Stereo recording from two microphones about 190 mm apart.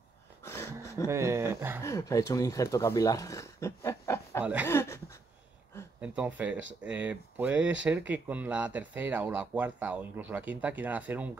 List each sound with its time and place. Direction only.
0.5 s a sound: 15° left (ahead or behind)
1.1 s speech: 15° right (ahead or behind)
1.8 s speech: 15° left (ahead or behind)
5.9 s speech: 10° right (ahead or behind)